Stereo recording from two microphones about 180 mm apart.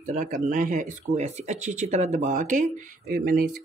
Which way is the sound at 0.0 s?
45° right (ahead or behind).